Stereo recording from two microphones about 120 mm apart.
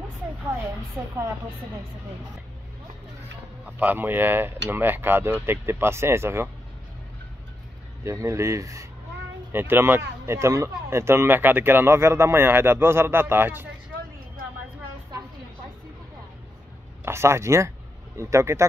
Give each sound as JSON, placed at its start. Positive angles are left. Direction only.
{"t": 1.0, "sound": "speech", "side_deg": -15}
{"t": 3.6, "sound": "speech", "side_deg": -15}
{"t": 8.0, "sound": "speech", "side_deg": -25}
{"t": 17.0, "sound": "speech", "side_deg": -20}